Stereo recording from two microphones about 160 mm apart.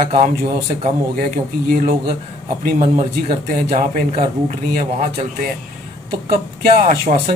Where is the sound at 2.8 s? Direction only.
40° right (ahead or behind).